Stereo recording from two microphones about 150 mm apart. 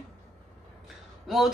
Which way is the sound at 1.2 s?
Centre (ahead or behind).